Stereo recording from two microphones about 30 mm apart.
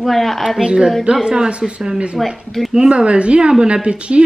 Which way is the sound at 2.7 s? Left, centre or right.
Right.